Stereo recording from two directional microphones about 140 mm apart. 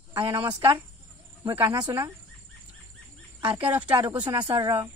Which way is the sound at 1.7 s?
30° right (ahead or behind).